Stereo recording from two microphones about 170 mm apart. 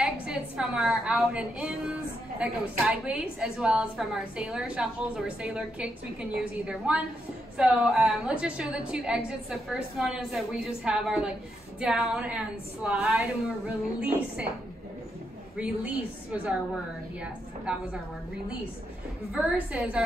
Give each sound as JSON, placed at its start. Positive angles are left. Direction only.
{"t": 0.0, "sound": "a woman's voice", "side_deg": -5}
{"t": 15.5, "sound": "a woman's voice", "side_deg": -10}
{"t": 19.3, "sound": "a woman's voice", "side_deg": -5}